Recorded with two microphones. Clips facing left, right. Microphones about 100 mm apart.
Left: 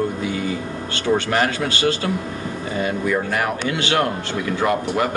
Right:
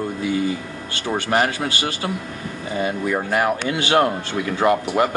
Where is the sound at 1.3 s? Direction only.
30° right (ahead or behind).